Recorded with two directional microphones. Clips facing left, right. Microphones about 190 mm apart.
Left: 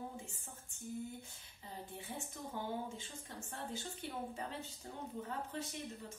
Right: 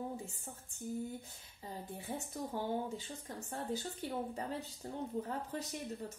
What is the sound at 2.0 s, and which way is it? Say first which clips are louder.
A woman's voice: right 7 dB; 40° right (ahead or behind).